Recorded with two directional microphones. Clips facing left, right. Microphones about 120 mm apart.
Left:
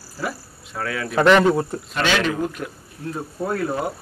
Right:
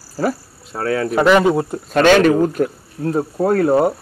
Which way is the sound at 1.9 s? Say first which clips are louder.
Right 12 dB; 45° right (ahead or behind).